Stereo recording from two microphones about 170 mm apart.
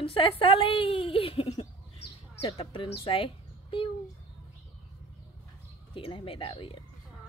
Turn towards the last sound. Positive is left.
turn(degrees=30)  # may be behind; listen again after turning